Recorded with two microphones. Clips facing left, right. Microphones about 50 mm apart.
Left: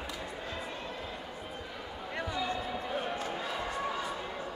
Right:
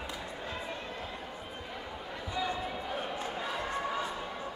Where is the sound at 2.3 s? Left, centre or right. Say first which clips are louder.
Right 2 dB; centre.